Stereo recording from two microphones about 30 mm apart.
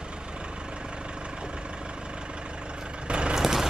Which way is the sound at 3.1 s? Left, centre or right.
Right.